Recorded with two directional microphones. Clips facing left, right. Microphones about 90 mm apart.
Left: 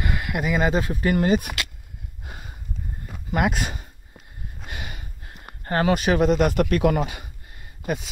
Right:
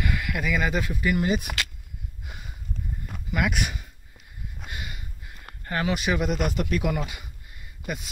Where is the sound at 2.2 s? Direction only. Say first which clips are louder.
Left 2 dB; 40° left (ahead or behind).